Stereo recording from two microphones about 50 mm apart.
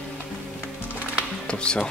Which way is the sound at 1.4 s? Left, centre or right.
Centre.